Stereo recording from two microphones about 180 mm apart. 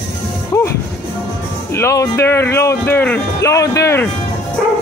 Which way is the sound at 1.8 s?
15° left (ahead or behind).